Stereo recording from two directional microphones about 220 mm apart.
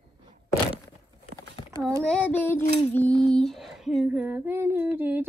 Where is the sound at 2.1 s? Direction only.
10° left (ahead or behind).